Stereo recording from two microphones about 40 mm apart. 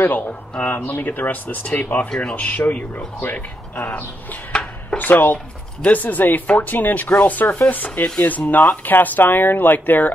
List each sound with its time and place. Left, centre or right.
0.0 s speech: left
2.0 s speech: left
2.3 s speech: left